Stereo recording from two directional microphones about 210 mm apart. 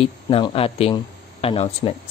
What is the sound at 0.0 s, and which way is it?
Speech, 25° left (ahead or behind).